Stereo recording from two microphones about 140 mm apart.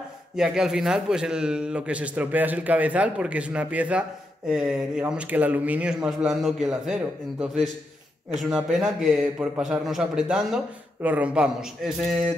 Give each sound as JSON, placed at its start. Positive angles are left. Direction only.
{"t": 0.4, "sound": "a man's voice", "side_deg": -5}